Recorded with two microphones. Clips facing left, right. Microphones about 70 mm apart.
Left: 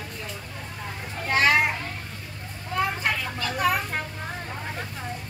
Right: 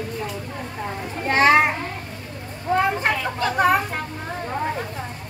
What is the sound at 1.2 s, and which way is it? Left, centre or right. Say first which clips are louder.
Children playing: right 5 dB; right.